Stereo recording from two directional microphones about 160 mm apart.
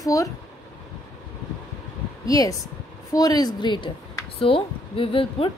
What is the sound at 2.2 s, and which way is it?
A woman's voice, 20° left (ahead or behind).